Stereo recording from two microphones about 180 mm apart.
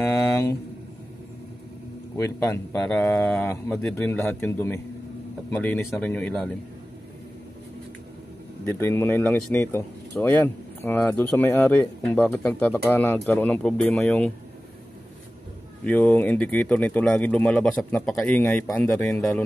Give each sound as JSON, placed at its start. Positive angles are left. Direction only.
{"t": 0.0, "sound": "a sound", "side_deg": 15}
{"t": 2.1, "sound": "speech", "side_deg": 15}
{"t": 8.6, "sound": "speech", "side_deg": 15}
{"t": 15.8, "sound": "speech", "side_deg": 10}